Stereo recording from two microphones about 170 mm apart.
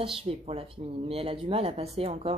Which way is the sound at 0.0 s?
30° right (ahead or behind).